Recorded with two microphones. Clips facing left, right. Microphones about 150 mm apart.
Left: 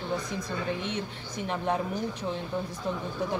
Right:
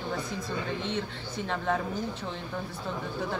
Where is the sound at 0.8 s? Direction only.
15° left (ahead or behind).